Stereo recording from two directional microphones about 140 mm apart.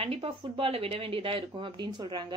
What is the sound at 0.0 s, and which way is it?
Speech, 45° right (ahead or behind).